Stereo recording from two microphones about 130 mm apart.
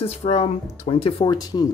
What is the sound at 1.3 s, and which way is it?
Speech, 30° left (ahead or behind).